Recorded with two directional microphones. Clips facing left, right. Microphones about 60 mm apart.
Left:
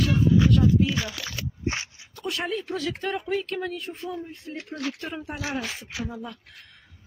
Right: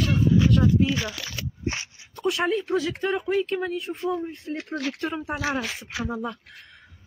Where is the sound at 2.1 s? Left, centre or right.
Centre.